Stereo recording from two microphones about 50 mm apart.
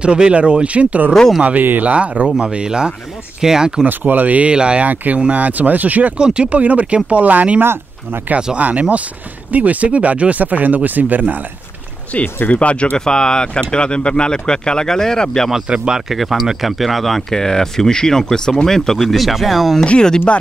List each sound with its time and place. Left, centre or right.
0.0 s speech: right
3.8 s speech: right
4.8 s speech: right
6.1 s speech: centre
7.6 s speech: right
8.5 s speech: right
12.1 s speech: left
13.0 s speech: centre
15.7 s speech: centre
16.1 s speech: centre
18.9 s speech: centre
19.8 s speech: centre